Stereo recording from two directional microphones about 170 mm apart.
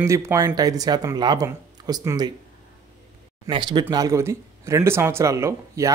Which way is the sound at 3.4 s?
30° right (ahead or behind).